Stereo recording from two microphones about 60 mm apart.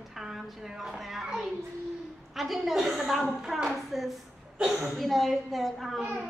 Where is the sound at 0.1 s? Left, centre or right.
Centre.